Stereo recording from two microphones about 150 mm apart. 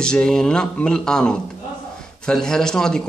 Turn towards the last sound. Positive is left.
turn(degrees=5)  # may be behind; listen again after turning